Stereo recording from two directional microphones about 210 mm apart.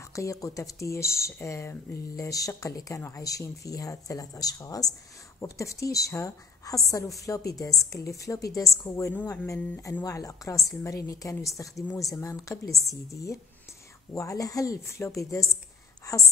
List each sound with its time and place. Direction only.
0.0 s a woman's voice: 15° left (ahead or behind)